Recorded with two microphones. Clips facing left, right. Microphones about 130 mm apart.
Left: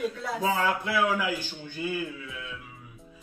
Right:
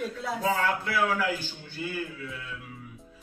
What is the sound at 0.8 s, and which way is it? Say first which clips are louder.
A man's voice: left 1 dB; 15° left (ahead or behind).